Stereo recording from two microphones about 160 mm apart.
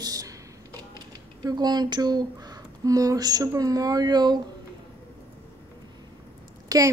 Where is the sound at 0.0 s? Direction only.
20° right (ahead or behind).